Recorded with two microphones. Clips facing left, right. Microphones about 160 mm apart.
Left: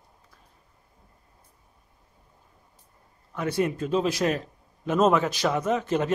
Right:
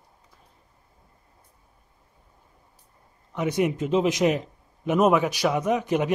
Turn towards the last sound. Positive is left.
turn(degrees=-15)  # may be behind; listen again after turning